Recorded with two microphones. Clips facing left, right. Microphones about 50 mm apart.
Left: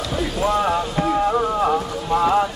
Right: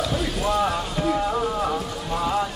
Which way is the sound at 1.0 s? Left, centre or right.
Left.